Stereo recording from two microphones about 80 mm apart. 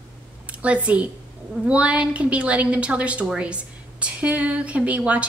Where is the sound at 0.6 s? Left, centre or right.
Centre.